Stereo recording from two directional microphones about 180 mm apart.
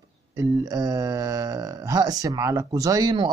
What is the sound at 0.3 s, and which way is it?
Speech, 20° right (ahead or behind).